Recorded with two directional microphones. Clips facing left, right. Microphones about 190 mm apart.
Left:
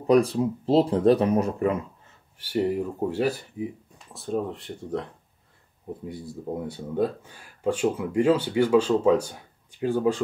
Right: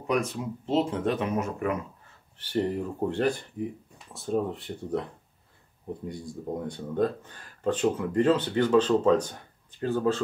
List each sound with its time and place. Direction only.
0.0 s speech: 35° left (ahead or behind)
2.3 s speech: 10° left (ahead or behind)
6.0 s speech: 5° left (ahead or behind)